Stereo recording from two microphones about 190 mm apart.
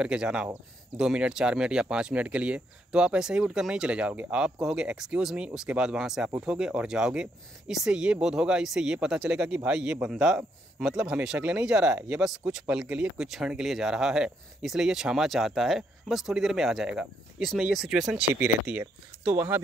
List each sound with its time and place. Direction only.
0.0 s speech: 5° right (ahead or behind)